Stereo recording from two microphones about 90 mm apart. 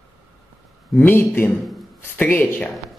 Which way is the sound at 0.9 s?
20° left (ahead or behind).